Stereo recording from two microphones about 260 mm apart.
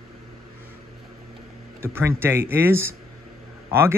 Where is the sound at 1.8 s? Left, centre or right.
Centre.